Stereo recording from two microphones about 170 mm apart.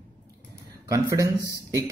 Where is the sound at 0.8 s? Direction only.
20° right (ahead or behind).